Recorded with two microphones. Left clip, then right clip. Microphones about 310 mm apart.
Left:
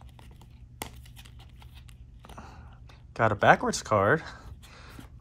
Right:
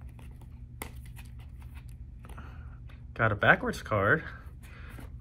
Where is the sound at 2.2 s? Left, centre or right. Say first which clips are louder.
Left 4 dB; centre.